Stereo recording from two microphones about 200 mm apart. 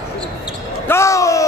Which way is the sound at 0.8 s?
15° left (ahead or behind).